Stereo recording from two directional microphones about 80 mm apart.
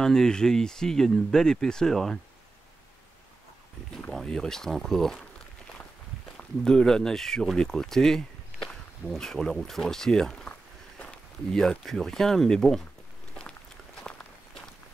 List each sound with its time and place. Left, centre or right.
0.0 s speech: centre
4.1 s speech: centre
6.3 s speech: centre
11.0 s a sound: centre
11.8 s speech: centre
13.4 s walk: centre